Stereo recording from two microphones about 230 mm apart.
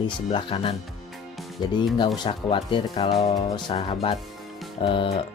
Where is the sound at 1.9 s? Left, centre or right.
Centre.